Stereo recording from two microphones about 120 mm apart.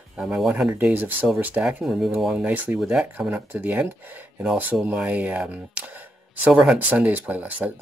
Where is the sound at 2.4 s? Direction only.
15° right (ahead or behind).